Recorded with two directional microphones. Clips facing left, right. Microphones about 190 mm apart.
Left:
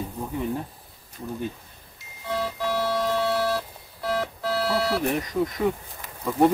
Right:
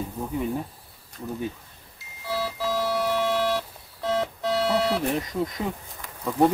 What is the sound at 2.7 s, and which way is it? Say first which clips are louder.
Music: even; 10° right (ahead or behind).